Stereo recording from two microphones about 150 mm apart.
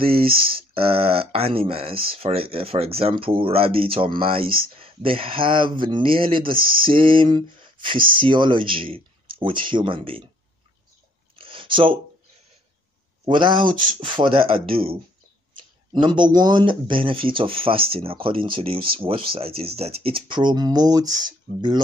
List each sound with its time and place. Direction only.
0.0 s speech: 40° right (ahead or behind)
11.3 s a sound: 35° right (ahead or behind)
13.3 s speech: 30° right (ahead or behind)